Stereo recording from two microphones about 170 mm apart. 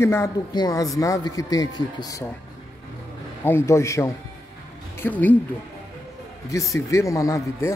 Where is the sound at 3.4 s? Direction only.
15° left (ahead or behind).